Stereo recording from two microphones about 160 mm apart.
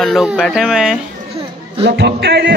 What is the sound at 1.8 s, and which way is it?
Music, 90° right.